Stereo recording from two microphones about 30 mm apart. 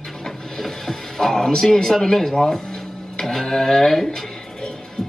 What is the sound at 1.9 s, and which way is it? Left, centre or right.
Speech, centre.